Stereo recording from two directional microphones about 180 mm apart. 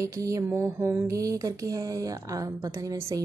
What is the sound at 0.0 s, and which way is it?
A woman's voice, 20° right (ahead or behind).